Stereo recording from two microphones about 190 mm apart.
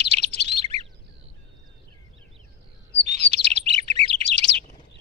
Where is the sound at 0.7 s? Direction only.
65° left (ahead or behind).